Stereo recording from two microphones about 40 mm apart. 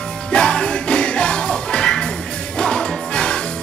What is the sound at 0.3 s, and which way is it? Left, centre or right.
Music, left.